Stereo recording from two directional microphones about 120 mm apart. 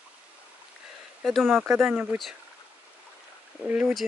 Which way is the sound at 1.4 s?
20° right (ahead or behind).